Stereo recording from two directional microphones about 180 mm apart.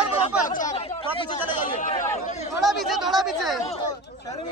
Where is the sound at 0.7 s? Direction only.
35° left (ahead or behind).